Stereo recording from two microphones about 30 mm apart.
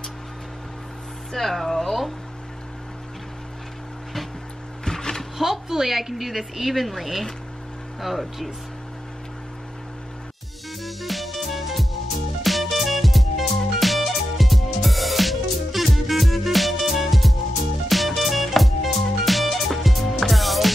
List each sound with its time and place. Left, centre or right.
1.3 s speech: centre
4.8 s vehicle: centre
5.4 s a woman's voice: centre
10.8 s music: centre